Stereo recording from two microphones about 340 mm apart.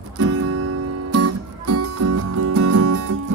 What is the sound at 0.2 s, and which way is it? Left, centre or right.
Music, right.